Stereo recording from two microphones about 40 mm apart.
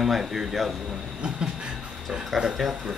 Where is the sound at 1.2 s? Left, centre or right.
Right.